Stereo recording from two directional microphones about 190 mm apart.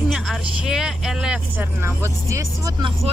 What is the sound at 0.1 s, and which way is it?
Speech, centre (ahead or behind).